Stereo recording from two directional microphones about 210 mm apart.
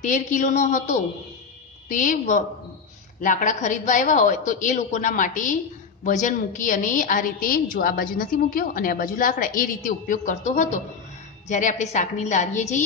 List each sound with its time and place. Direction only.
0.0 s a woman's voice: 35° left (ahead or behind)